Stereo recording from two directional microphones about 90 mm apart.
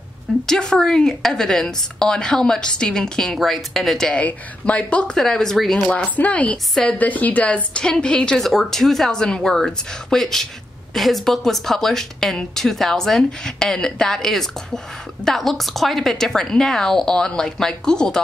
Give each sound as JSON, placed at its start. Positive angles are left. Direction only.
{"t": 0.5, "sound": "a woman's voice", "side_deg": 10}
{"t": 4.1, "sound": "a woman's voice", "side_deg": 15}